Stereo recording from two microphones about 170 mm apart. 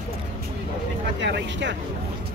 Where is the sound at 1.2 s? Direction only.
90° right.